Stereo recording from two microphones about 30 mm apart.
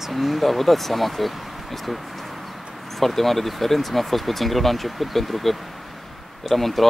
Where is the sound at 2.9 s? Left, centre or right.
Centre.